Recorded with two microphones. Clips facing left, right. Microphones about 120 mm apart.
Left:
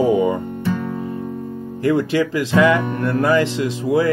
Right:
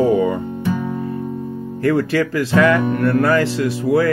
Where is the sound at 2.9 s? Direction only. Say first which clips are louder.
Right 2 dB; 20° left (ahead or behind).